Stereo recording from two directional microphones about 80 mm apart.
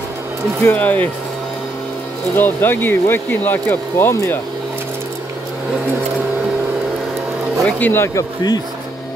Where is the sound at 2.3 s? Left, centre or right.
Left.